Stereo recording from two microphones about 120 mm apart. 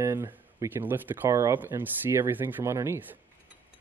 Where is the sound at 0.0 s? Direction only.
20° right (ahead or behind).